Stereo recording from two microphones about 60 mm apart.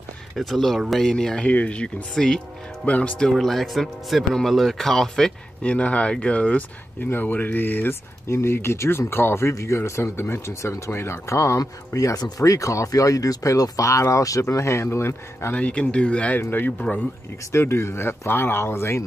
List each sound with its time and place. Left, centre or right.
0.4 s speech: centre
1.5 s speech: left
2.8 s speech: left
5.6 s speech: left
7.0 s speech: left
8.3 s speech: left
14.5 s speech: left
15.5 s speech: centre
16.3 s speech: left
17.5 s speech: left